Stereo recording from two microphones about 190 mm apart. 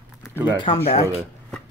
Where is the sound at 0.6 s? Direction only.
30° left (ahead or behind).